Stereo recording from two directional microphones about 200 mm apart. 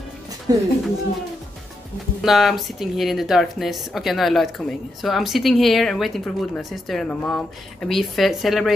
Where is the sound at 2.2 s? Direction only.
Centre (ahead or behind).